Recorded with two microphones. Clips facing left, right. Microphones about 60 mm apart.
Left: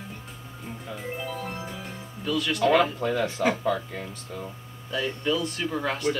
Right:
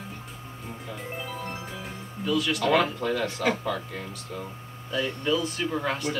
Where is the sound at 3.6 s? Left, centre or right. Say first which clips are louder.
Left 3 dB; left.